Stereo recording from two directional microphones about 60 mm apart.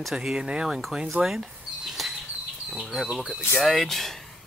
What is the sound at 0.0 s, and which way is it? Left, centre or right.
Speech, centre.